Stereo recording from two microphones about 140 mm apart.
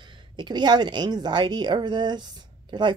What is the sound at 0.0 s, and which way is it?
A woman's voice, 35° right (ahead or behind).